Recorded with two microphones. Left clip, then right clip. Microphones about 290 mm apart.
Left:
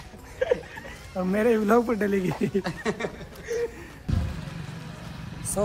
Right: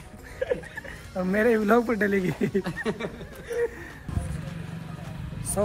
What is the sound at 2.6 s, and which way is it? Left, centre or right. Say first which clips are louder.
Speech: left 1 dB; centre.